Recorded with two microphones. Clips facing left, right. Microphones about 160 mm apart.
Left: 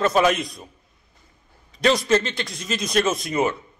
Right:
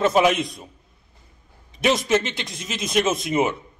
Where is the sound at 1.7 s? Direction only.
20° right (ahead or behind).